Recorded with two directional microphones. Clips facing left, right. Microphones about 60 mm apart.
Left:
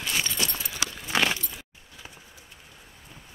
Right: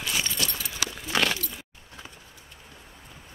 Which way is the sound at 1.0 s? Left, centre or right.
Centre.